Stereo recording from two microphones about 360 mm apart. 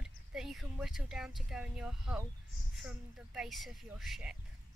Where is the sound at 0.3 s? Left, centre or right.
Centre.